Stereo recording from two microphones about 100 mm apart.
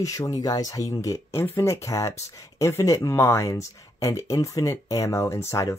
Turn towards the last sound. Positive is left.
turn(degrees=30)  # may be behind; listen again after turning